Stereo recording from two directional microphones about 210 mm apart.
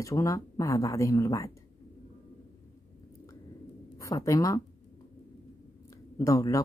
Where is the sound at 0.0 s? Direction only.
15° left (ahead or behind).